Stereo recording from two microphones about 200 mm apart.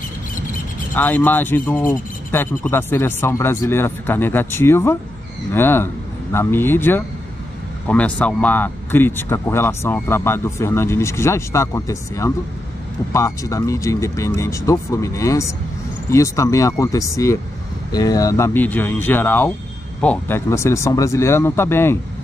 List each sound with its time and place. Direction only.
0.9 s speech: 10° left (ahead or behind)